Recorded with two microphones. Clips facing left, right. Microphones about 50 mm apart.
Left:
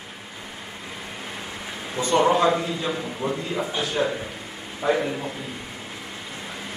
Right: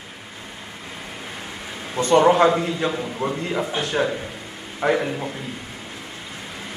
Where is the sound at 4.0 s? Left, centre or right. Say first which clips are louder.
Right 2 dB; right.